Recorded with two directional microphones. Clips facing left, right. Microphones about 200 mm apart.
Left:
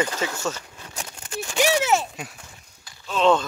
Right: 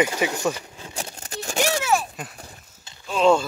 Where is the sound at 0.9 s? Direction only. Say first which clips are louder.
Left 1 dB; 40° right (ahead or behind).